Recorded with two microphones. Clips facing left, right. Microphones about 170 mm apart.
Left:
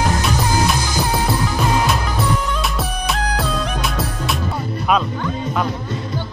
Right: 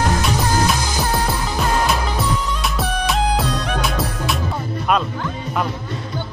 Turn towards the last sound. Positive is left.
turn(degrees=0)  # may be behind; listen again after turning